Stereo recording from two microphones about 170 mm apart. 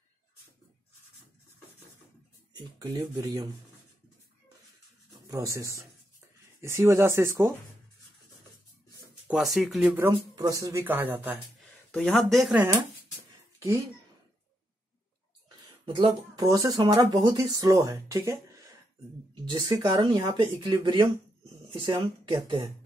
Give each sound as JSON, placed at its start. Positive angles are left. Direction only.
{"t": 2.5, "sound": "speech", "side_deg": -25}
{"t": 5.3, "sound": "speech", "side_deg": -20}
{"t": 9.3, "sound": "speech", "side_deg": 0}
{"t": 10.1, "sound": "speech", "side_deg": -20}
{"t": 11.9, "sound": "speech", "side_deg": 5}
{"t": 13.6, "sound": "speech", "side_deg": -15}
{"t": 15.8, "sound": "speech", "side_deg": -30}